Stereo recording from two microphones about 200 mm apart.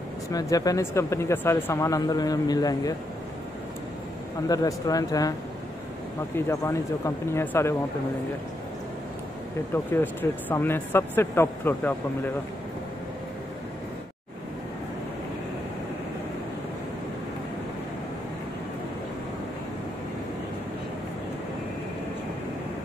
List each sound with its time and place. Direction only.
0.3 s speech: 15° left (ahead or behind)
4.5 s speech: 15° left (ahead or behind)
6.3 s speech: 15° left (ahead or behind)
10.5 s speech: 10° left (ahead or behind)